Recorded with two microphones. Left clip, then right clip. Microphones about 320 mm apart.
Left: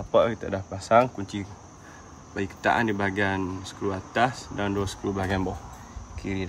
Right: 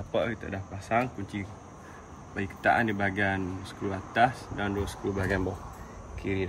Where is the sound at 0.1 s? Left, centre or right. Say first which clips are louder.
Left 8 dB; centre.